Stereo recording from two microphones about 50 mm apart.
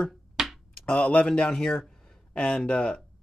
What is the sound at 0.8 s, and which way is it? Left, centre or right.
Speech, left.